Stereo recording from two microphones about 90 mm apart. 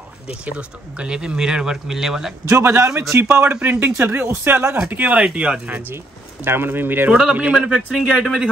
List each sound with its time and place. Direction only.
0.3 s speech: 15° right (ahead or behind)
2.5 s speech: 20° right (ahead or behind)
5.0 s speech: 15° right (ahead or behind)